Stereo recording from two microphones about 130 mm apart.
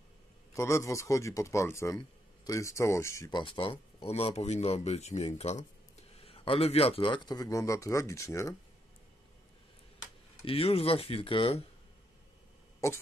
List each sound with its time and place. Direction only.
0.5 s speech: 20° left (ahead or behind)
3.3 s speech: 40° left (ahead or behind); by 8.5 s 25° left (ahead or behind)
10.4 s speech: 50° left (ahead or behind)